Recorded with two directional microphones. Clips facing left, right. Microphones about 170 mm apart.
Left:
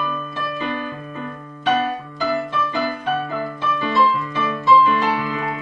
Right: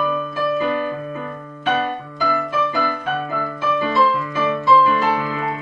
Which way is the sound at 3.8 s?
5° right (ahead or behind).